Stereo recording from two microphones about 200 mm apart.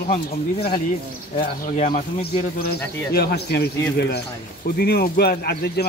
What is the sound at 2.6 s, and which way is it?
Speech, 50° left (ahead or behind).